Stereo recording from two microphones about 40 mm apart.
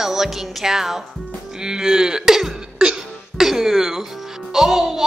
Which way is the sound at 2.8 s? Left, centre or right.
Centre.